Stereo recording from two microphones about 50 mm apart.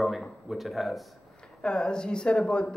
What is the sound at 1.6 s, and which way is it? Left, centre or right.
Speech, centre.